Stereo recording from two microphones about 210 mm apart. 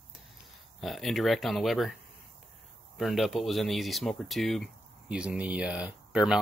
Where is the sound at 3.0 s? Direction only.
Centre (ahead or behind).